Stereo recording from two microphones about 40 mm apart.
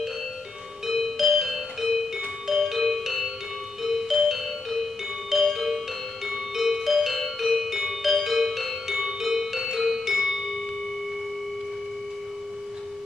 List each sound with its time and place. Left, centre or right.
0.8 s music: centre